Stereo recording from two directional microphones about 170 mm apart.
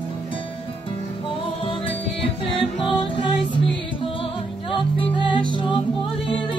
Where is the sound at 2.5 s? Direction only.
30° left (ahead or behind).